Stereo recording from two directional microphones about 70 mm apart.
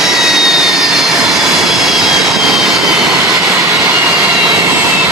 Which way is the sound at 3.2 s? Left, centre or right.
Right.